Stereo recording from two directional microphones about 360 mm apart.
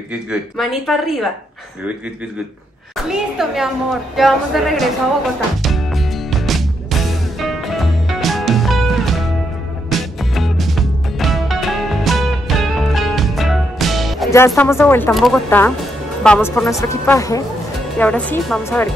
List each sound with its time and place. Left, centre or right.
0.3 s a woman's voice: centre
3.1 s a woman's voice: centre
5.6 s music: centre
16.3 s a woman's voice: centre